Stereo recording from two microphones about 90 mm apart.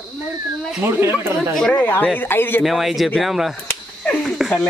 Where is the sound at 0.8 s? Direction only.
25° right (ahead or behind).